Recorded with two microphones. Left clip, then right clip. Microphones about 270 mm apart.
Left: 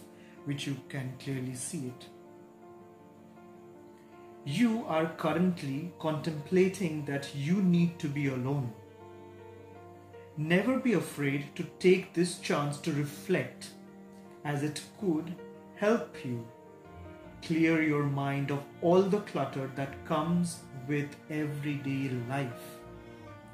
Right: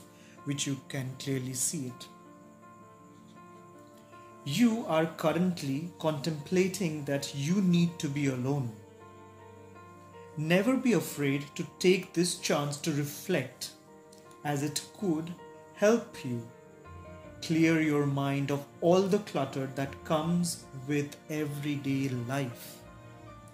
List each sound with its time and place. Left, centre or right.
0.5 s speech: right
4.5 s speech: right
10.4 s speech: right
15.8 s speech: right
17.4 s speech: right